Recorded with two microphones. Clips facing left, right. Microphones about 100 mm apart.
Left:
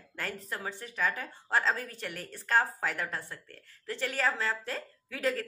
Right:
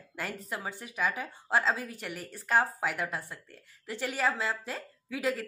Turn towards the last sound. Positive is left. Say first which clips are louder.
# even
turn(degrees=-5)  # may be behind; listen again after turning